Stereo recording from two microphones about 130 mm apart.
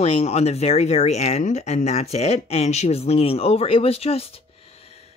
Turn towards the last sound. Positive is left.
turn(degrees=50)  # may be behind; listen again after turning